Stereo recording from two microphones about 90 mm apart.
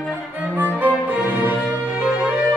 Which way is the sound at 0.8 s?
15° right (ahead or behind).